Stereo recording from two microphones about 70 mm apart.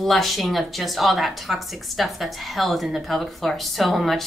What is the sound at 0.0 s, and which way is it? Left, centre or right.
Speech, centre.